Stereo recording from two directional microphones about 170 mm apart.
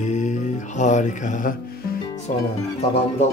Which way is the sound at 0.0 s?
45° left (ahead or behind).